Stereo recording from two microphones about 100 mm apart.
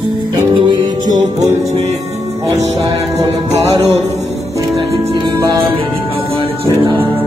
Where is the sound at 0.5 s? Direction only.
45° right (ahead or behind).